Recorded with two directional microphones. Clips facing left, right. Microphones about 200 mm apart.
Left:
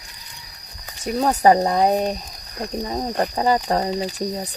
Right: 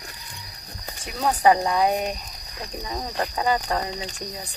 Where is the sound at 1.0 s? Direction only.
40° left (ahead or behind).